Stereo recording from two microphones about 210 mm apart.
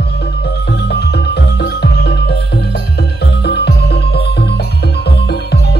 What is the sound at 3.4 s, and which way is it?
Music, 50° left (ahead or behind).